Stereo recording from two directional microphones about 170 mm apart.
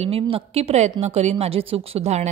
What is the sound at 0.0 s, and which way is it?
A woman's voice, 35° right (ahead or behind).